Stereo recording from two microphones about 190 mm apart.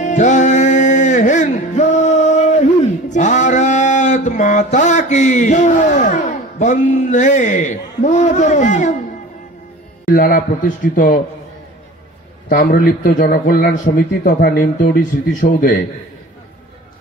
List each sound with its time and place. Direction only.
0.0 s music: 40° left (ahead or behind)
3.1 s a sound: 40° left (ahead or behind)
10.1 s a man's voice: 45° left (ahead or behind)
12.4 s a man's voice: 50° left (ahead or behind)